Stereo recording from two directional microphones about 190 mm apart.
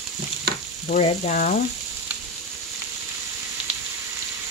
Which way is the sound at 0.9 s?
40° left (ahead or behind).